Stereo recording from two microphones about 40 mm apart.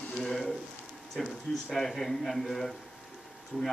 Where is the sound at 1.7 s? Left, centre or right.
Centre.